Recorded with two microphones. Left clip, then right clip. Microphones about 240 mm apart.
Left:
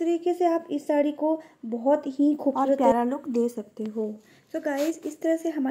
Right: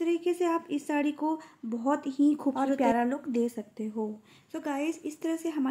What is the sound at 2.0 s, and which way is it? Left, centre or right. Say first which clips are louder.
Speech: left 2 dB; right.